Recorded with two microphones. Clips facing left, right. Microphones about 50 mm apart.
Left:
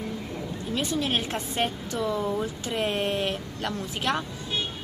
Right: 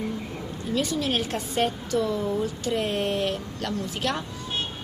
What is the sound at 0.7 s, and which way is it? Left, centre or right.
Speech, left.